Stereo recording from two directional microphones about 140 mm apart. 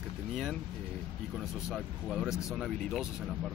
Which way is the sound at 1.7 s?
Centre (ahead or behind).